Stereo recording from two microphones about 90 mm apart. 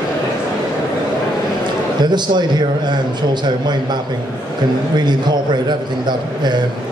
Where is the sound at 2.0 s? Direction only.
55° right (ahead or behind).